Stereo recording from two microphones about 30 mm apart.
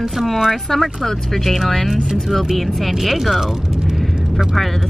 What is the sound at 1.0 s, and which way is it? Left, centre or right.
Speech, centre.